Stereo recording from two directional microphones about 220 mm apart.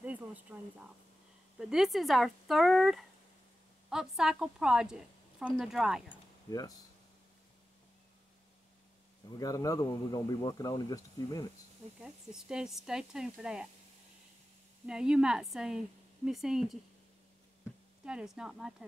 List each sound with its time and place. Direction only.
0.0 s a sound: 5° right (ahead or behind)
1.6 s a woman's voice: centre (ahead or behind)
6.5 s speech: 15° left (ahead or behind)
9.4 s speech: 15° left (ahead or behind)
12.0 s a woman's voice: 5° right (ahead or behind)
14.9 s a woman's voice: 5° right (ahead or behind)
18.0 s a woman's voice: 5° right (ahead or behind)